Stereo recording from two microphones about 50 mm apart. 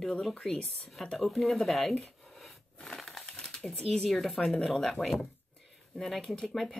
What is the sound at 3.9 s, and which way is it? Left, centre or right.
Speech, centre.